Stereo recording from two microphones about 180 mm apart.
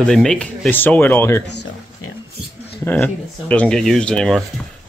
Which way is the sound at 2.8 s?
10° left (ahead or behind).